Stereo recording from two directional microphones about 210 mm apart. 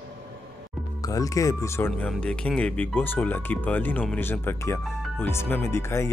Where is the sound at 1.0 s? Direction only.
15° left (ahead or behind).